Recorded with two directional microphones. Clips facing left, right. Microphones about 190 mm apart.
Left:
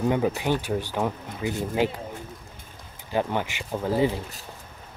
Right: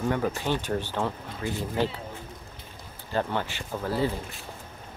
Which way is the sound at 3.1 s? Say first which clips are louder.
Left 2 dB; 15° left (ahead or behind).